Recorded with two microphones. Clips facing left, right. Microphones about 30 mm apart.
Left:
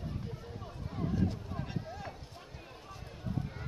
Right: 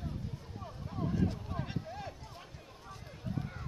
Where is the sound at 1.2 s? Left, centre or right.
Centre.